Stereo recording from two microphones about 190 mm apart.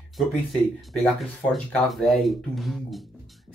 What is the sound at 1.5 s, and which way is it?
Speech, centre (ahead or behind).